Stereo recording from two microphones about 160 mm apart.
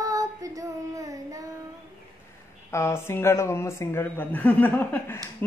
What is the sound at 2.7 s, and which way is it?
Speech, 15° left (ahead or behind).